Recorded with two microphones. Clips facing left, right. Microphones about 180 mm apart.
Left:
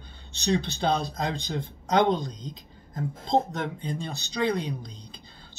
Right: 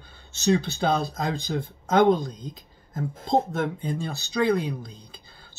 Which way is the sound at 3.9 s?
20° left (ahead or behind).